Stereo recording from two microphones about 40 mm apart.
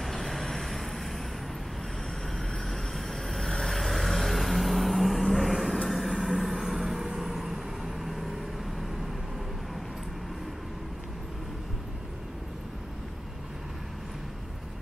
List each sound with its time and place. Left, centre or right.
0.0 s vehicle: centre
2.3 s vehicle: centre